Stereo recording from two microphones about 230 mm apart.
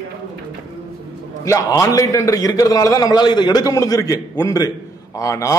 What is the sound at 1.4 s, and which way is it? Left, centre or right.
A man's voice, centre.